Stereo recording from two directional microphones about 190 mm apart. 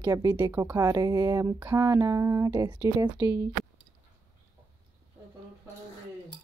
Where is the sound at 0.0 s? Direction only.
20° right (ahead or behind).